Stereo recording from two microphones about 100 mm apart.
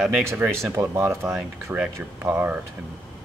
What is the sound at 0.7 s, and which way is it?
Speech, 25° right (ahead or behind).